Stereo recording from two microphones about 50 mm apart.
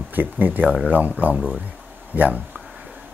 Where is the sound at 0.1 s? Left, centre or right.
Right.